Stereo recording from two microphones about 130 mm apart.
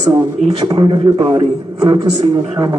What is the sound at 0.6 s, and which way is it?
Speech, 35° right (ahead or behind).